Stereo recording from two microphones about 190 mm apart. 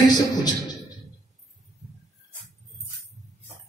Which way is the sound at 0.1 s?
20° left (ahead or behind).